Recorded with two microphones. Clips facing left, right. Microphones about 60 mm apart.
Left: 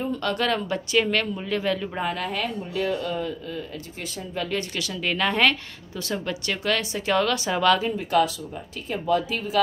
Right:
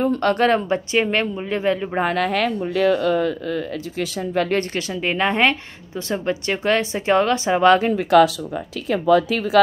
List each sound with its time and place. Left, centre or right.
0.0 s a woman's voice: right
2.0 s speech: right
4.4 s speech: right
4.7 s a woman's voice: right
7.9 s speech: right